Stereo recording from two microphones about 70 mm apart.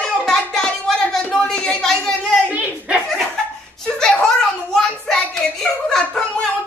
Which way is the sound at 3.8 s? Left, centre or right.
Centre.